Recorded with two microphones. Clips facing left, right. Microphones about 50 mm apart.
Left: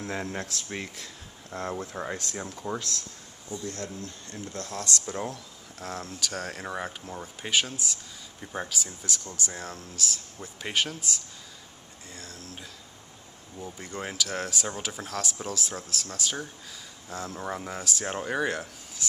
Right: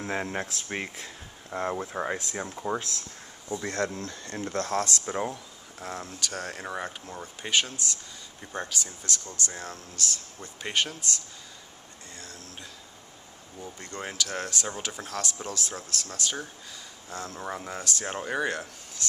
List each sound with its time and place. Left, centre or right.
0.0 s speech: right
3.6 s speech: right
5.0 s speech: right
5.3 s speech: centre
12.2 s a sound: centre
13.6 s speech: centre